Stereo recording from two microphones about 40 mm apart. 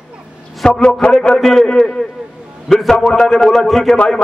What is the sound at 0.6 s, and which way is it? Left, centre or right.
A man's voice, centre.